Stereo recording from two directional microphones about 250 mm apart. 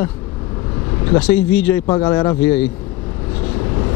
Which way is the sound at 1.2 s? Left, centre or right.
Centre.